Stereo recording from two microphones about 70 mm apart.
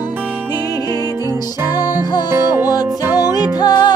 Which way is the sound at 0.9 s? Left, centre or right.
Left.